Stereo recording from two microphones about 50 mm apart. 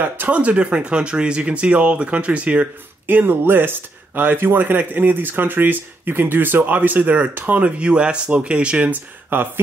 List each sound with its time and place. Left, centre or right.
0.0 s speech: right
3.1 s speech: right
8.9 s speech: right